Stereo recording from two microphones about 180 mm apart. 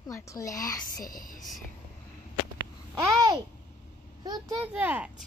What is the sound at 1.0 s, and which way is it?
Speech, 50° left (ahead or behind).